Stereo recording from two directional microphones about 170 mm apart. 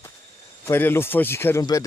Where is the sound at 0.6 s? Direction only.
15° left (ahead or behind).